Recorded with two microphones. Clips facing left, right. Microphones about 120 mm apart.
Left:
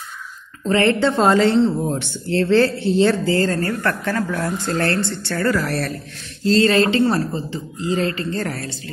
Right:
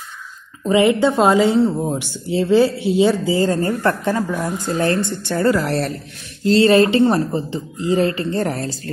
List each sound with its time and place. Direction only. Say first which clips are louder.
0.7 s speech: right 2 dB; 10° right (ahead or behind)